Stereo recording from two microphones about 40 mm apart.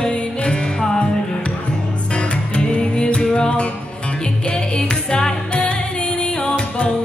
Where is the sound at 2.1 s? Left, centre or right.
Left.